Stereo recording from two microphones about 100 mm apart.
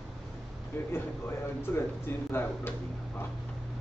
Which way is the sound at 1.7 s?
15° left (ahead or behind).